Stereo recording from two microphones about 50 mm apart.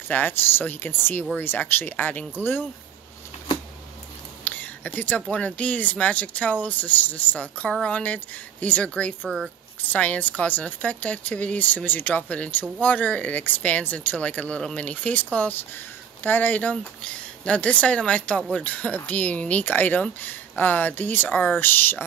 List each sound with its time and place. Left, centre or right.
0.1 s speech: left
4.5 s speech: left
16.7 s speech: centre; by 22.0 s left